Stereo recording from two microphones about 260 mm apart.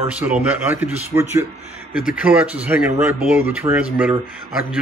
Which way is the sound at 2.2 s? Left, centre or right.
Centre.